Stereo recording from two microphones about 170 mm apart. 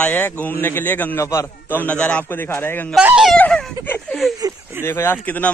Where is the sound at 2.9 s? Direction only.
5° right (ahead or behind).